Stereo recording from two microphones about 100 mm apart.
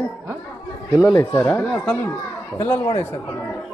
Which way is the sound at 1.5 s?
10° left (ahead or behind).